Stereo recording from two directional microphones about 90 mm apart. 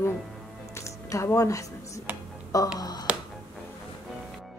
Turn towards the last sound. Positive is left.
turn(degrees=50)  # may be behind; listen again after turning